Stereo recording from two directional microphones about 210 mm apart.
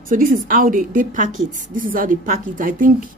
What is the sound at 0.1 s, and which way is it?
A woman's voice, 40° right (ahead or behind).